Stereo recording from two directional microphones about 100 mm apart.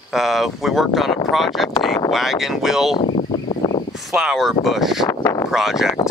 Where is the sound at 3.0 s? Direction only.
70° left (ahead or behind).